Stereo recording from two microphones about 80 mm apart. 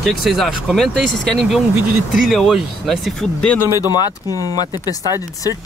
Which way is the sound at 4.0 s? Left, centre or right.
Left.